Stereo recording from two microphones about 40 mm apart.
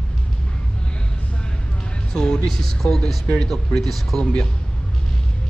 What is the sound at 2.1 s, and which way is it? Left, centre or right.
Music, centre.